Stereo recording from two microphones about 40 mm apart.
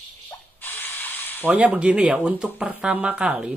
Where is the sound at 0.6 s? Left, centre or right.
Left.